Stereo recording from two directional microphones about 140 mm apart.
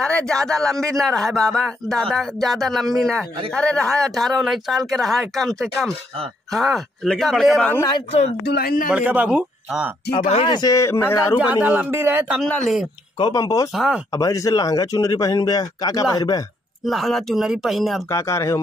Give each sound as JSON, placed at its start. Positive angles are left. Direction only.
{"t": 0.3, "sound": "speech", "side_deg": 5}
{"t": 8.6, "sound": "speech", "side_deg": 80}
{"t": 8.9, "sound": "speech", "side_deg": -10}
{"t": 10.4, "sound": "speech", "side_deg": 30}
{"t": 11.6, "sound": "speech", "side_deg": -10}
{"t": 12.4, "sound": "speech", "side_deg": 5}
{"t": 13.2, "sound": "speech", "side_deg": 25}
{"t": 13.7, "sound": "speech", "side_deg": -5}
{"t": 14.1, "sound": "speech", "side_deg": 25}
{"t": 16.8, "sound": "speech", "side_deg": 0}
{"t": 18.1, "sound": "speech", "side_deg": 20}